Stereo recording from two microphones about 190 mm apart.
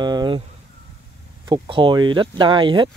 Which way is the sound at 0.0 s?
20° right (ahead or behind).